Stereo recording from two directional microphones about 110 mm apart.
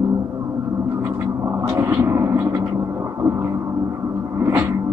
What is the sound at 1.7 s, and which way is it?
Vehicle, 20° right (ahead or behind).